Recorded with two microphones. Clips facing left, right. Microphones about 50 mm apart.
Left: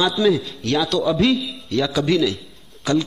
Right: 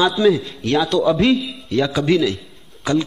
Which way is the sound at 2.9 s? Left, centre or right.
Centre.